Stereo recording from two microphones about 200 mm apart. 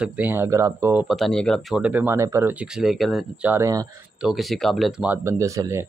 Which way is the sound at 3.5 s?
15° right (ahead or behind).